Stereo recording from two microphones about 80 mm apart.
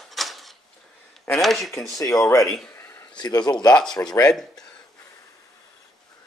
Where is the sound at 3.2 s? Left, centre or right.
Left.